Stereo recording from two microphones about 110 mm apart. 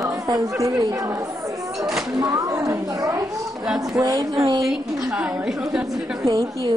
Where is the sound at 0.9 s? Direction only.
30° right (ahead or behind).